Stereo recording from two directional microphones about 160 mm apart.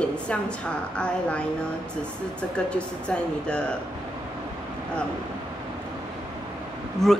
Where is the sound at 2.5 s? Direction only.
5° left (ahead or behind).